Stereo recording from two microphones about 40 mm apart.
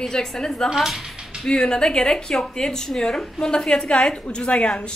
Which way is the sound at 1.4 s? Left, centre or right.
Centre.